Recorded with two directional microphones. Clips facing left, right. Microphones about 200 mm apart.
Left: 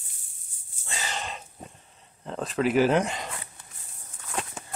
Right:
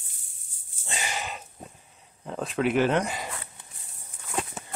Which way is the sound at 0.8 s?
15° right (ahead or behind).